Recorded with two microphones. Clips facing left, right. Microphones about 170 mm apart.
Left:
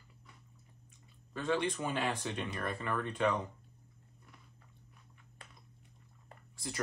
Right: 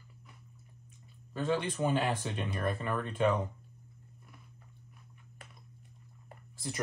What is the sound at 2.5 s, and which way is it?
Speech, 25° right (ahead or behind).